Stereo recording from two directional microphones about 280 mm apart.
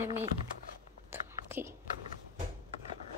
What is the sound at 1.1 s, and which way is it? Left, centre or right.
Biting, centre.